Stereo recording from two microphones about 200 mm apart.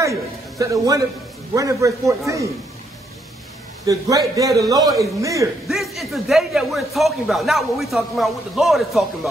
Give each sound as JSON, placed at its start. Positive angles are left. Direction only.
{"t": 0.0, "sound": "music", "side_deg": -15}
{"t": 1.5, "sound": "a man's voice", "side_deg": -15}
{"t": 3.8, "sound": "a man's voice", "side_deg": -15}
{"t": 5.7, "sound": "a man's voice", "side_deg": 0}